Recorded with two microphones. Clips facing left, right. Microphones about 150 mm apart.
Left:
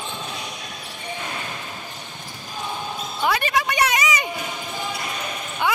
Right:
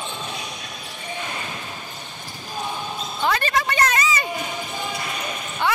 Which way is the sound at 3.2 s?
10° left (ahead or behind).